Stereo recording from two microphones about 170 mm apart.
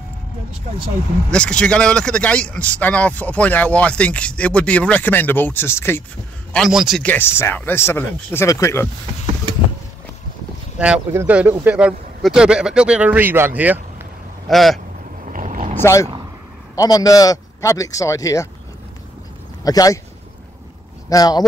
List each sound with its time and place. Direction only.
1.3 s speech: 5° left (ahead or behind)
6.5 s a man's voice: centre (ahead or behind)
7.0 s speech: 10° left (ahead or behind)
10.8 s a man's voice: 10° right (ahead or behind)
14.5 s a man's voice: centre (ahead or behind)
15.3 s vehicle: 50° right (ahead or behind)
15.7 s speech: 15° left (ahead or behind)
19.6 s speech: 20° left (ahead or behind)
21.1 s speech: 25° left (ahead or behind)